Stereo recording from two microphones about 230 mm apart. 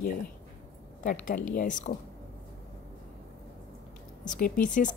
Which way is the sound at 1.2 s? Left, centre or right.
Left.